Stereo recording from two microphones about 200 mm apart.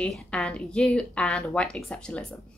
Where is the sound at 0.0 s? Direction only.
5° left (ahead or behind).